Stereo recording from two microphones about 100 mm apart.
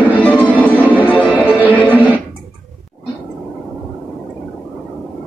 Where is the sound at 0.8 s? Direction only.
15° right (ahead or behind).